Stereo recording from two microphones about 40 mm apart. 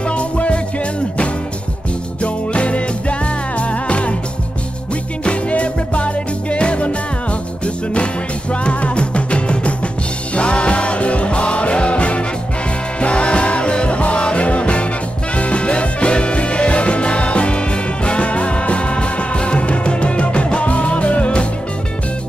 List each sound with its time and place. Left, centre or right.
0.1 s music: left
2.2 s music: left
5.2 s music: left